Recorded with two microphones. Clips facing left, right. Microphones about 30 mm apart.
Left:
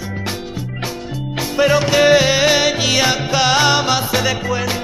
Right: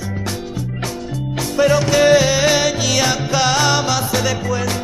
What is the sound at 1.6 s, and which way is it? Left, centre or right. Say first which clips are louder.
Music: even; left.